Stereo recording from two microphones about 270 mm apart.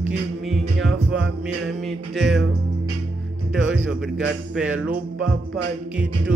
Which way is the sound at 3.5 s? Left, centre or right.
Centre.